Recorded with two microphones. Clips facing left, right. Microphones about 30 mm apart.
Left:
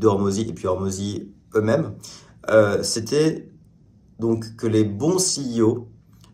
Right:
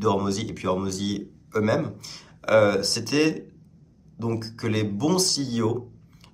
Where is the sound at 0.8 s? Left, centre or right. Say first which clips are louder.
Left 1 dB; right.